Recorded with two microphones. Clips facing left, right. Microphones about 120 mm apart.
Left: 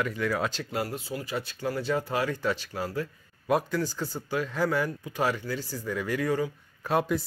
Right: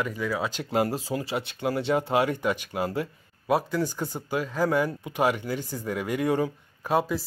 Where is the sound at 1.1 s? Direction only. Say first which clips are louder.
Right 4 dB; 20° right (ahead or behind).